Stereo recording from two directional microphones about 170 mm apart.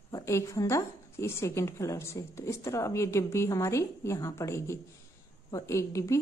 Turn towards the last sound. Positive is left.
turn(degrees=20)  # may be behind; listen again after turning